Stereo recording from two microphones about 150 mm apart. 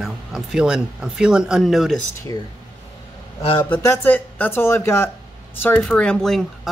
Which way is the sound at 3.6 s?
15° left (ahead or behind).